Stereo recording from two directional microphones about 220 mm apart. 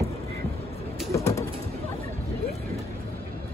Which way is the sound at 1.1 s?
15° left (ahead or behind).